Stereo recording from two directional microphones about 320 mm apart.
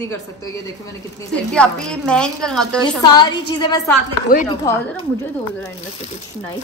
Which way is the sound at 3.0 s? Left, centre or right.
Centre.